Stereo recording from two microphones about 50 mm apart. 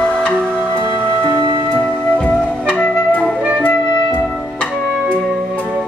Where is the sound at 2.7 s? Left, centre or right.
Left.